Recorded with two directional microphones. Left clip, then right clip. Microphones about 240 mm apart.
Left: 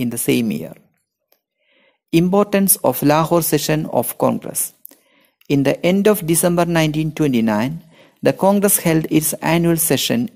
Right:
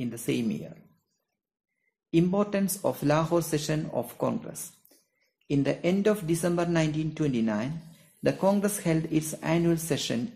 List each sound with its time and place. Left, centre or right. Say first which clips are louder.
0.0 s speech: left 12 dB; left
2.0 s speech: left 11 dB; left